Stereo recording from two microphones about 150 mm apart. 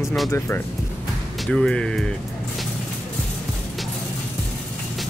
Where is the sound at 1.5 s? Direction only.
5° left (ahead or behind).